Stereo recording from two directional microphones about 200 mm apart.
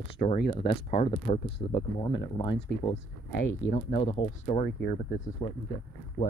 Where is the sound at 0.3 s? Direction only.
30° left (ahead or behind).